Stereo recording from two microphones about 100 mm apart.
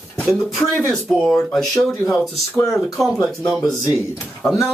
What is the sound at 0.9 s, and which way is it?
Speech, centre (ahead or behind).